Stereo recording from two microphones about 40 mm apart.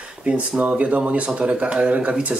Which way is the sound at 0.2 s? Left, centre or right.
Right.